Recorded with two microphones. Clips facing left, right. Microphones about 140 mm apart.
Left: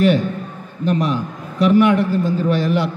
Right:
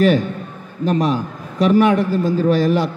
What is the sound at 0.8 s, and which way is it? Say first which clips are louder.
A man's voice: right 1 dB; 40° right (ahead or behind).